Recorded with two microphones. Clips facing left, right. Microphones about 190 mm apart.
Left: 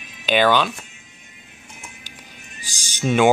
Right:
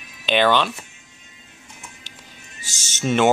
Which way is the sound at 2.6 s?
25° right (ahead or behind).